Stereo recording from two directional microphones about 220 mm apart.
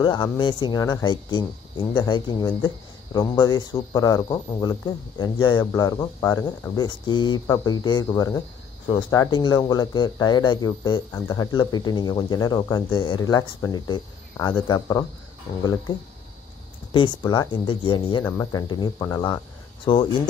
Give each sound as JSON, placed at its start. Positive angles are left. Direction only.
{"t": 0.0, "sound": "speech", "side_deg": 20}